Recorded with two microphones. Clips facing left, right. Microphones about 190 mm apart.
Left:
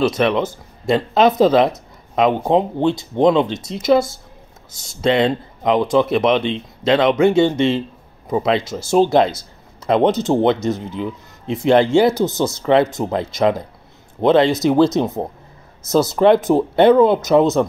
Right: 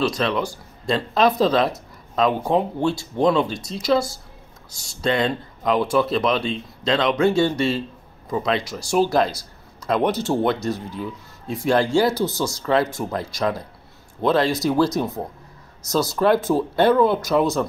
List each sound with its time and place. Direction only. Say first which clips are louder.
0.0 s speech: left 5 dB; 25° left (ahead or behind)